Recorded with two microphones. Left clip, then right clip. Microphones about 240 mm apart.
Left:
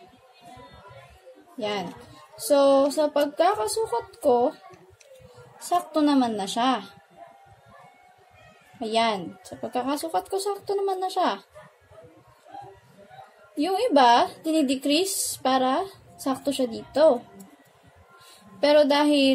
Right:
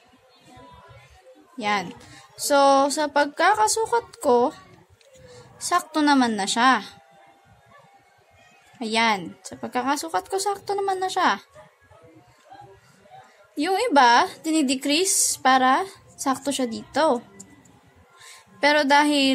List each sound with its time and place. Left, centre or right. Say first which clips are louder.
1.6 s a woman's voice: right 4 dB; right
5.7 s a woman's voice: right 2 dB; right
8.8 s a woman's voice: right 2 dB; right
13.6 s a woman's voice: right 2 dB; right
18.6 s a woman's voice: right 1 dB; right